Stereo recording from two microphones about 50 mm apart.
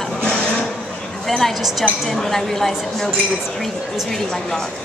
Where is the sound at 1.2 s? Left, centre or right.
Centre.